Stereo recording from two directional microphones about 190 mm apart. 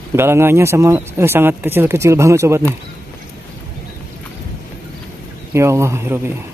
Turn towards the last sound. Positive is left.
turn(degrees=-15)  # may be behind; listen again after turning